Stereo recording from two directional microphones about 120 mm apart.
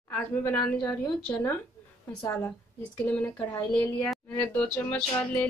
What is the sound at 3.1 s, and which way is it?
Speech, 10° left (ahead or behind).